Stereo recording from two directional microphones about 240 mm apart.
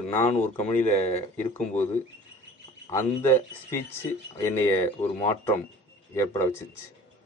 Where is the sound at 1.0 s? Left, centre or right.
Left.